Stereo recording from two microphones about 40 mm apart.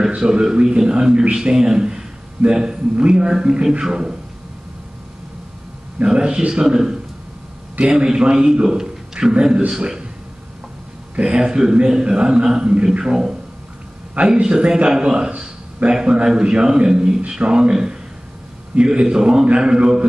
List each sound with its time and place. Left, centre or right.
0.2 s a man's voice: centre
6.0 s a man's voice: right
11.1 s a man's voice: right